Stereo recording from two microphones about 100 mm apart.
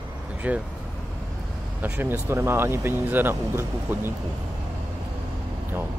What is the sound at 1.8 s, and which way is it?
Speech, 20° right (ahead or behind).